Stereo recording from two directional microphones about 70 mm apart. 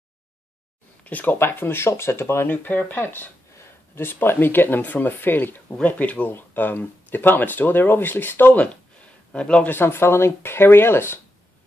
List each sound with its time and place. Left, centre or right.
1.0 s speech: left
9.3 s a man's voice: centre
9.7 s speech: left